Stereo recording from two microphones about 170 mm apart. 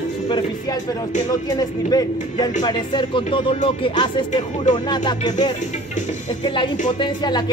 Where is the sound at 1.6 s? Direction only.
20° left (ahead or behind).